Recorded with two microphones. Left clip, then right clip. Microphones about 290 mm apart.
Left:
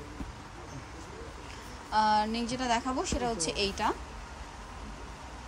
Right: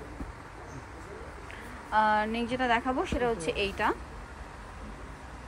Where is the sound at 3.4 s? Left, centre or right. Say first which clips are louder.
Right 1 dB; left.